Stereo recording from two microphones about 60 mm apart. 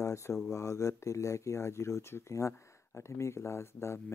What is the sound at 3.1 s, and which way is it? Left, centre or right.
Speech, left.